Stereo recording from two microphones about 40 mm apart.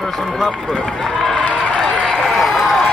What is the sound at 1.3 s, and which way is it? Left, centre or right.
Run, left.